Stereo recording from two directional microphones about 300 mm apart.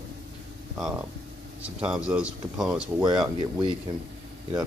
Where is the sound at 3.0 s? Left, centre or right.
Centre.